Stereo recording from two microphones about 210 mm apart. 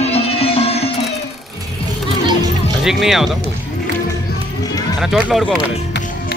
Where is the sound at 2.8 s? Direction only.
Centre (ahead or behind).